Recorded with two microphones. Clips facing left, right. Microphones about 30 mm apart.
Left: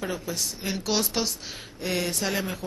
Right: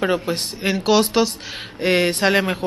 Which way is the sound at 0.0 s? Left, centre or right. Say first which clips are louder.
Right 10 dB; right.